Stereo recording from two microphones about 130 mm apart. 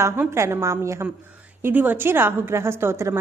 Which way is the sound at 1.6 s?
15° right (ahead or behind).